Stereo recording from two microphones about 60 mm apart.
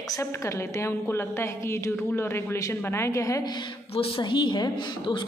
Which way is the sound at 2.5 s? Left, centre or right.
Left.